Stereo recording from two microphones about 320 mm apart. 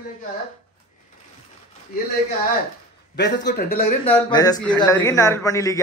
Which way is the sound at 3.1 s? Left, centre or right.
Left.